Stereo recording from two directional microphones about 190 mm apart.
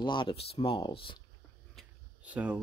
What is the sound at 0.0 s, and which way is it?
Speech, 25° left (ahead or behind).